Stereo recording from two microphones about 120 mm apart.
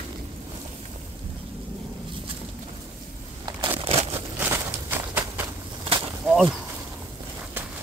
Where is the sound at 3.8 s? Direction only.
55° right (ahead or behind).